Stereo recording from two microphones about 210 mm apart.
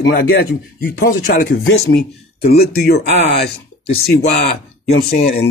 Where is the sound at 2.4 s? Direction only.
45° left (ahead or behind).